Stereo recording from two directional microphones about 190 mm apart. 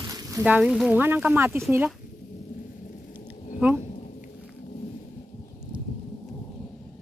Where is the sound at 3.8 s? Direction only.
40° left (ahead or behind).